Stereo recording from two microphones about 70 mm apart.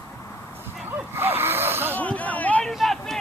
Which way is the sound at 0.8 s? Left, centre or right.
Right.